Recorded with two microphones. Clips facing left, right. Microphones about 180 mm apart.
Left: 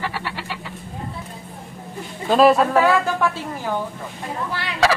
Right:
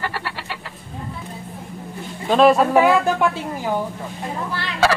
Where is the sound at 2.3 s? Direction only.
Centre (ahead or behind).